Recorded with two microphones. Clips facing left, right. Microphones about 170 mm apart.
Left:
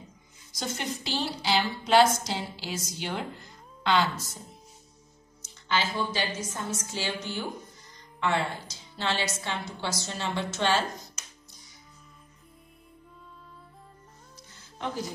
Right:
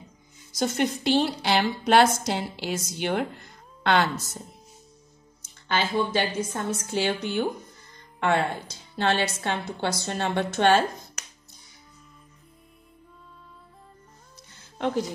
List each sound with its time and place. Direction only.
0.6 s a woman's voice: 60° right (ahead or behind)
5.4 s a woman's voice: 55° right (ahead or behind)